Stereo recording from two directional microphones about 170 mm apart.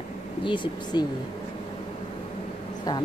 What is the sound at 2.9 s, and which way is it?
Speech, 25° left (ahead or behind).